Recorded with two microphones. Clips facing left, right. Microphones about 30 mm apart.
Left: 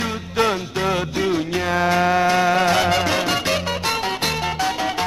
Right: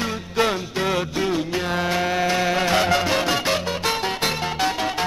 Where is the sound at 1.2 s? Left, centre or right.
Left.